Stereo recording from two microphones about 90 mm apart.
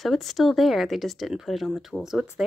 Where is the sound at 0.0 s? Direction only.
Centre (ahead or behind).